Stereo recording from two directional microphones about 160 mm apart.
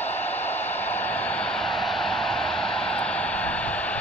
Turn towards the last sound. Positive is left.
turn(degrees=10)  # may be behind; listen again after turning